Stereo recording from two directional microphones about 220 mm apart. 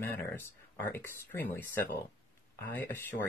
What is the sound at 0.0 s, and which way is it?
Speech, 10° left (ahead or behind).